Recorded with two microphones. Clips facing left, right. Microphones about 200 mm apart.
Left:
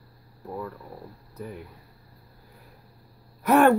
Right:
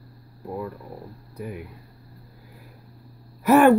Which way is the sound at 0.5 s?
15° right (ahead or behind).